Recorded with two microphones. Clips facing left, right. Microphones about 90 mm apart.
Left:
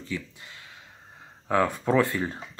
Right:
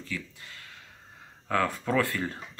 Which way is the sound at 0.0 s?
20° left (ahead or behind).